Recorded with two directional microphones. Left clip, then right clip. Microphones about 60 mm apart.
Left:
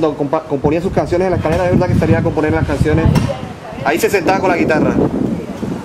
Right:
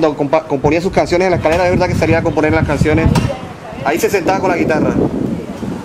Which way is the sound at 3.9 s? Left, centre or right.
Centre.